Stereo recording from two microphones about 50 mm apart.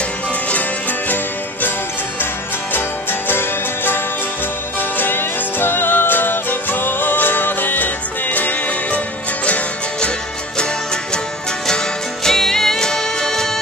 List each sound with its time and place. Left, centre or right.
0.5 s music: left
2.7 s music: left
11.6 s music: centre